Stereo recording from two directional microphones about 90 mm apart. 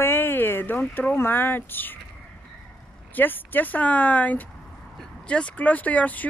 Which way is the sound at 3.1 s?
20° left (ahead or behind).